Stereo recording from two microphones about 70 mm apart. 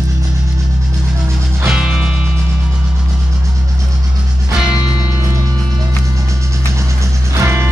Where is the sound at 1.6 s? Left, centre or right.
Centre.